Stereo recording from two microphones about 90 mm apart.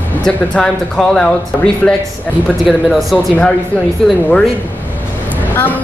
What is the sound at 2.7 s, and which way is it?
Speech, centre (ahead or behind).